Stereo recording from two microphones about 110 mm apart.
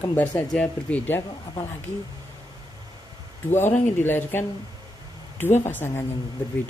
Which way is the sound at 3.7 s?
20° left (ahead or behind).